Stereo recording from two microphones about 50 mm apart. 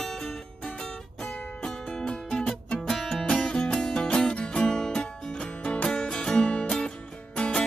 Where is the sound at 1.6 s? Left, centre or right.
Centre.